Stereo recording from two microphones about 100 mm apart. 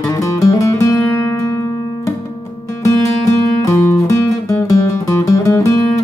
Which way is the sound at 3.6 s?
30° left (ahead or behind).